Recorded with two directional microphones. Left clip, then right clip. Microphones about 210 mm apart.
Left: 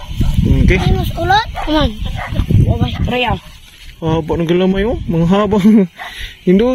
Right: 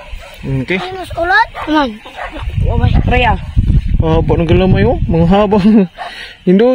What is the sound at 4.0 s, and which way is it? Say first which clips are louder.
Speech: right 3 dB; 10° right (ahead or behind).